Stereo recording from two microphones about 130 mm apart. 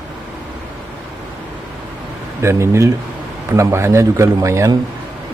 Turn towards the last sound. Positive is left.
turn(degrees=-25)  # may be behind; listen again after turning